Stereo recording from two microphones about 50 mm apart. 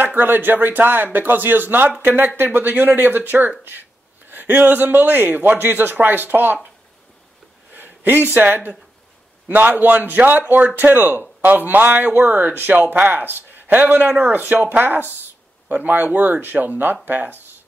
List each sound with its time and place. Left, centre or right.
0.0 s speech: right
7.7 s a sound: right
8.3 s speech: right